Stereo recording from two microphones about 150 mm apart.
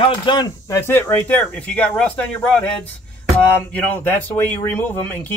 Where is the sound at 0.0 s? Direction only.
30° left (ahead or behind).